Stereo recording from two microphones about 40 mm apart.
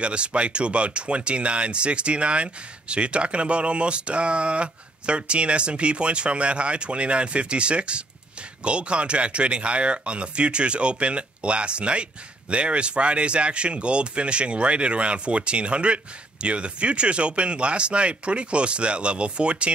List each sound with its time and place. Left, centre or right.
0.0 s speech: right